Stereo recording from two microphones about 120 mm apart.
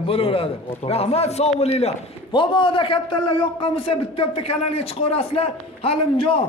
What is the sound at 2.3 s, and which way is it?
A man's voice, 40° left (ahead or behind).